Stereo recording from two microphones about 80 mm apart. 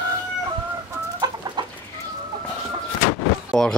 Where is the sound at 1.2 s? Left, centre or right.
Right.